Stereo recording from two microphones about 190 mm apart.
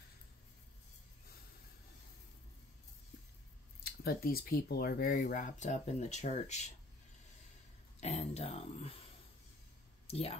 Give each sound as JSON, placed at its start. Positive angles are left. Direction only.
{"t": 3.8, "sound": "speech", "side_deg": 50}
{"t": 8.0, "sound": "a sound", "side_deg": 35}
{"t": 10.0, "sound": "speech", "side_deg": 35}